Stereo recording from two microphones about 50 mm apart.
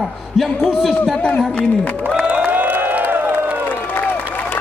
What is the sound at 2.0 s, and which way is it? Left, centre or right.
Crowd, right.